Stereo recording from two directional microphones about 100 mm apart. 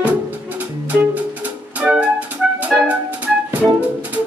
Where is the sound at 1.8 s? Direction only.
15° right (ahead or behind).